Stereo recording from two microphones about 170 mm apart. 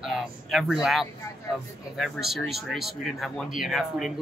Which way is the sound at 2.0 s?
Centre (ahead or behind).